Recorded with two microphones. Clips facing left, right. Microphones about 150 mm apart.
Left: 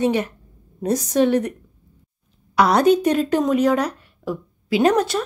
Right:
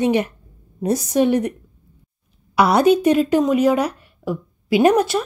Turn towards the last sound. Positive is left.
turn(degrees=-10)  # may be behind; listen again after turning